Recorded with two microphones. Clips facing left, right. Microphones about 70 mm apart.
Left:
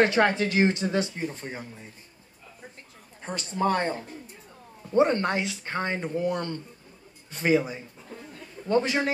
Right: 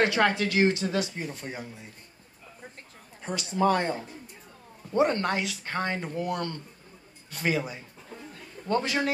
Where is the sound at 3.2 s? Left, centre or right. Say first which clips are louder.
Right 2 dB; left.